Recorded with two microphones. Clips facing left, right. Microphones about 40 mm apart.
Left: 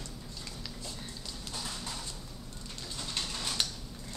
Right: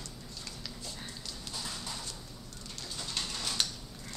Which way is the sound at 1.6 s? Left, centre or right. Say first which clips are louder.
Left 1 dB; centre.